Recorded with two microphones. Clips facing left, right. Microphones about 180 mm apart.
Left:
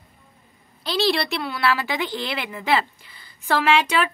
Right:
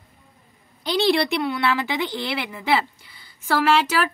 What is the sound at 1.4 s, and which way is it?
A woman's voice, 20° right (ahead or behind).